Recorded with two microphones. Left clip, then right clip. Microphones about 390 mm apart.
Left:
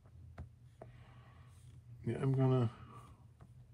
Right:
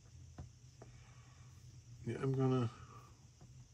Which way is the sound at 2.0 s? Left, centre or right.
Centre.